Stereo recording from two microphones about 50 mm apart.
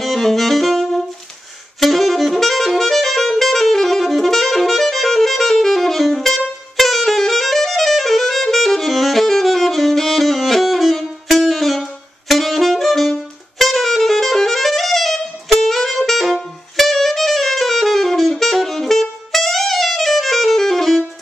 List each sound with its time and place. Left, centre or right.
0.0 s saxophone: centre